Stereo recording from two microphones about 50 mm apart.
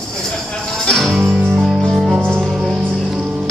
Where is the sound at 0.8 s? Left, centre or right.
Centre.